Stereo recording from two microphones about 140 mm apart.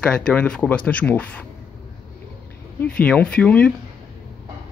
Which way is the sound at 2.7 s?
10° left (ahead or behind).